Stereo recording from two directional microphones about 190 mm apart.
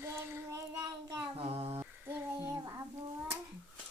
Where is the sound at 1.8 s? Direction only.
10° right (ahead or behind).